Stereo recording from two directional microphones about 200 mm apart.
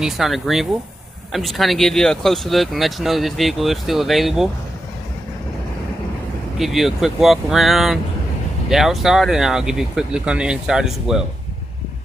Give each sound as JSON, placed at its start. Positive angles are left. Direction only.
{"t": 0.0, "sound": "speech", "side_deg": 0}
{"t": 6.6, "sound": "speech", "side_deg": 0}